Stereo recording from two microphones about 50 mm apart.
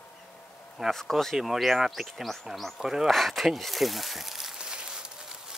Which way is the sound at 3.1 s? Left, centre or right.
Centre.